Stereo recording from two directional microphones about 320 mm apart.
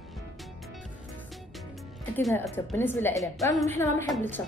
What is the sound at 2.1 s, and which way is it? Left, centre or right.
A woman's voice, centre.